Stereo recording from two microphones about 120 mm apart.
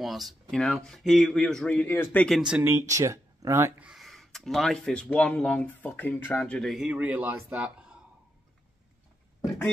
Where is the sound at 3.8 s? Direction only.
5° right (ahead or behind).